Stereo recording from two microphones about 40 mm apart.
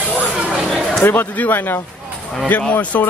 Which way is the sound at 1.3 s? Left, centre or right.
Left.